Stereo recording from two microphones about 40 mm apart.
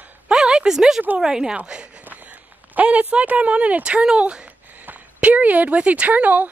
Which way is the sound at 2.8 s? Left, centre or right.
Right.